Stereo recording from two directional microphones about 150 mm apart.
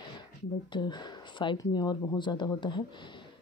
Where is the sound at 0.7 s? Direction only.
30° left (ahead or behind).